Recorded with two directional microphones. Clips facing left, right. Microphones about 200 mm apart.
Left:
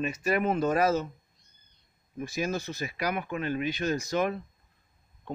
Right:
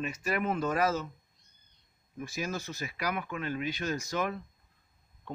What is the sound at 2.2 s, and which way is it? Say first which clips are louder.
Speech: left 5 dB; 20° left (ahead or behind).